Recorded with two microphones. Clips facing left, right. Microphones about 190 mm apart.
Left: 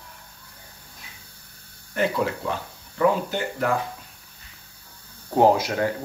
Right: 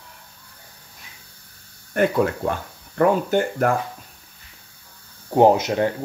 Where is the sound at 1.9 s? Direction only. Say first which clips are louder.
Right 5 dB; 50° right (ahead or behind).